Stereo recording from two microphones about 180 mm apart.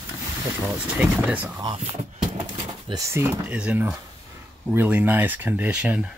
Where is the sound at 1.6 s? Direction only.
35° right (ahead or behind).